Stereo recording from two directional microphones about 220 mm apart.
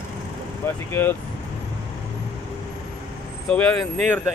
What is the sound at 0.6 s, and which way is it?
Speech, 10° left (ahead or behind).